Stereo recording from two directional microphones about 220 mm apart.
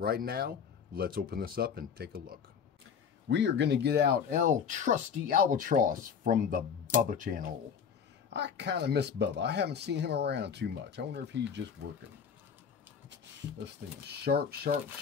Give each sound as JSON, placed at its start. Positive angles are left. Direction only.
{"t": 0.0, "sound": "speech", "side_deg": -45}
{"t": 3.3, "sound": "speech", "side_deg": -55}
{"t": 4.3, "sound": "speech", "side_deg": -35}
{"t": 8.3, "sound": "speech", "side_deg": -50}
{"t": 14.0, "sound": "speech", "side_deg": -45}